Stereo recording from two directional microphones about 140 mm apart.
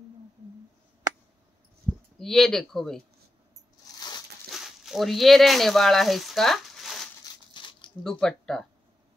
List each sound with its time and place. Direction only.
2.1 s speech: centre (ahead or behind)
4.5 s speech: centre (ahead or behind)
7.5 s a sound: 35° left (ahead or behind)
8.0 s speech: 5° left (ahead or behind)